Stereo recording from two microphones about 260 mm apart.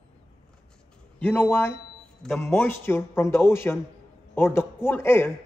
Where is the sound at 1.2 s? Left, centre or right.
Centre.